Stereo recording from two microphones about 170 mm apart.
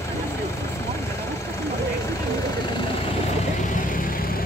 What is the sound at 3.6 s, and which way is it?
Vehicle, 50° left (ahead or behind).